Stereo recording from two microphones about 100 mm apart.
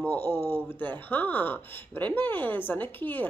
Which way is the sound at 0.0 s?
20° left (ahead or behind).